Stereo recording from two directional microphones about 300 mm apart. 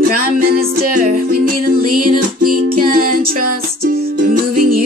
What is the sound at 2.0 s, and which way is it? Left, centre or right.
Music, right.